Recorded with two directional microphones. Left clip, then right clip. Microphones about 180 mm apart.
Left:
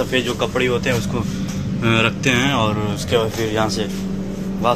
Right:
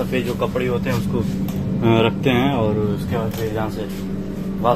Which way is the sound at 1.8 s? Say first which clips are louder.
Even; 40° left (ahead or behind).